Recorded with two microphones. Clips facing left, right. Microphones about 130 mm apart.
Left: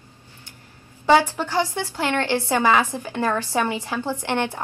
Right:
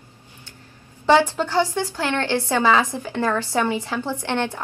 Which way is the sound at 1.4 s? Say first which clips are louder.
Right 3 dB; 15° left (ahead or behind).